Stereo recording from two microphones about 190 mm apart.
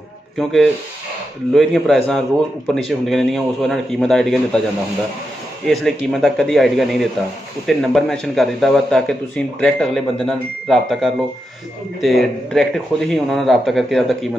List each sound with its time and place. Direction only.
0.4 s speech: centre (ahead or behind)
5.7 s speech: centre (ahead or behind)